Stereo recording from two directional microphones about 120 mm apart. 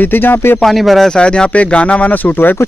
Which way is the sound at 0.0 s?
15° left (ahead or behind).